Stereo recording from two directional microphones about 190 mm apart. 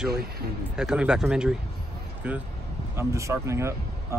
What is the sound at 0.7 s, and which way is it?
Speech, 5° right (ahead or behind).